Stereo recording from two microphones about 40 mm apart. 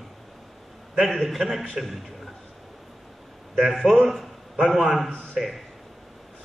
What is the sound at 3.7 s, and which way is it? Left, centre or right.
A man's voice, centre.